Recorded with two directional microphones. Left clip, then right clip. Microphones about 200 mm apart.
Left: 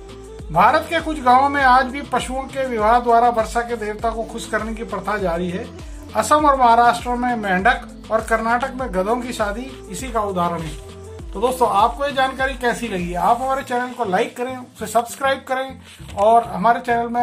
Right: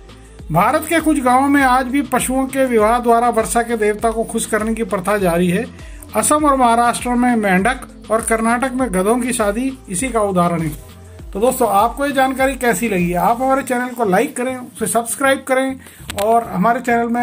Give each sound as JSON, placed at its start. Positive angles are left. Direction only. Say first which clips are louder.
{"t": 0.5, "sound": "speech", "louder": "even", "side_deg": -15}
{"t": 12.8, "sound": "a woman's voice", "louder": "right 7 dB", "side_deg": 0}
{"t": 13.6, "sound": "speech", "louder": "right 3 dB", "side_deg": -10}